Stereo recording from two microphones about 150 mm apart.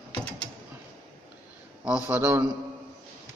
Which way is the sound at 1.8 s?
10° right (ahead or behind).